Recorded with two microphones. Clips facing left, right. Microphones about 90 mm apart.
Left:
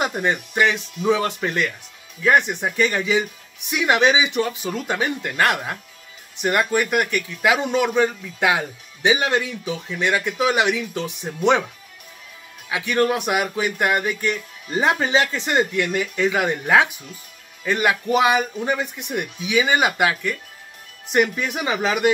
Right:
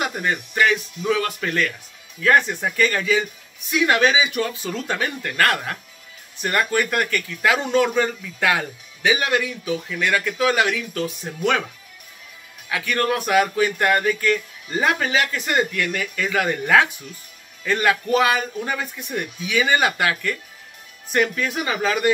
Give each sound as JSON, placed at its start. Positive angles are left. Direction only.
{"t": 0.0, "sound": "a man's voice", "side_deg": 25}
{"t": 12.6, "sound": "a man's voice", "side_deg": 20}